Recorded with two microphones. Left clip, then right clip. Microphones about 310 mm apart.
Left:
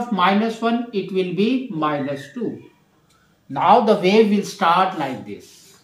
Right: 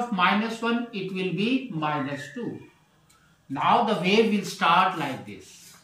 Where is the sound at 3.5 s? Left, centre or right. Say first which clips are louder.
Left 8 dB; centre.